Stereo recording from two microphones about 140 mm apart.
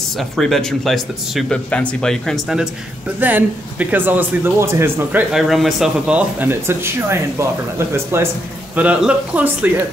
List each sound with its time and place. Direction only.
0.2 s speech: 5° left (ahead or behind); by 5.2 s 15° right (ahead or behind)
5.3 s speech: centre (ahead or behind)